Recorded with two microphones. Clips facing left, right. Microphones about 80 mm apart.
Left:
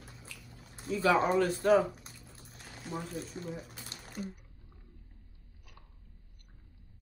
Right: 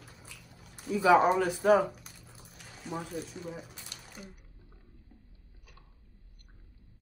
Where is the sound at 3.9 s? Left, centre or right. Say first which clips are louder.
Left 1 dB; left.